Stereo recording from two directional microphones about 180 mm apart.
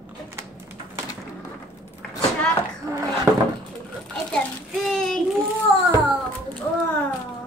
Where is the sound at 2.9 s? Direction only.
15° right (ahead or behind).